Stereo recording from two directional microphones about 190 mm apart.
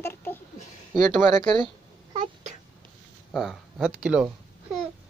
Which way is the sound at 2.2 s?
40° right (ahead or behind).